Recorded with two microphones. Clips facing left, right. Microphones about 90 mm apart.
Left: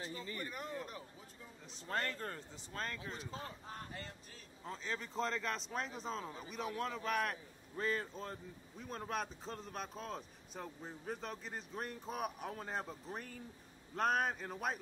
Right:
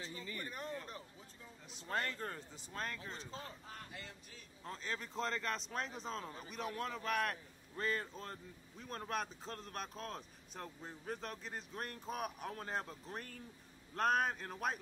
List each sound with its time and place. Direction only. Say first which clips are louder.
0.0 s a sound: left 2 dB; 35° left (ahead or behind)
1.9 s speech: even; 15° right (ahead or behind)
2.2 s a man's voice: even; 5° right (ahead or behind)
3.3 s speech: left 2 dB; 35° left (ahead or behind)
4.6 s a man's voice: left 1 dB; centre (ahead or behind)